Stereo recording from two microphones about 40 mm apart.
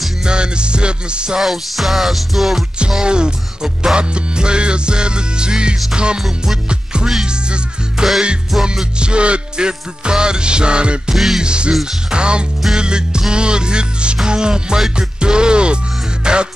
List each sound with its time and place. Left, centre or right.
0.2 s music: right
1.4 s music: centre
2.9 s music: right
6.2 s music: centre
6.7 s music: right
8.5 s music: centre
9.0 s music: right
11.1 s music: centre
11.4 s music: right
11.7 s music: centre
12.1 s music: right